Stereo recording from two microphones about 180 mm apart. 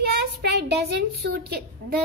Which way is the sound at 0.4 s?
65° right (ahead or behind).